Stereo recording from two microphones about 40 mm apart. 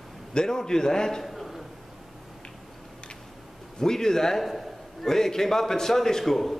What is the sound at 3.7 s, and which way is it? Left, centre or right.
A man's voice, centre.